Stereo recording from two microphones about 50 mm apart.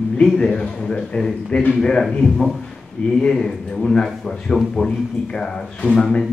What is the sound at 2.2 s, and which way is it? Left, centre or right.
Speech, centre.